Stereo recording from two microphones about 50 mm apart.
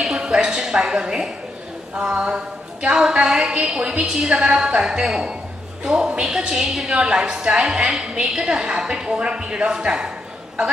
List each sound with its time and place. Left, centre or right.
0.0 s a sound: centre
2.9 s a woman's voice: centre
7.1 s a woman's voice: centre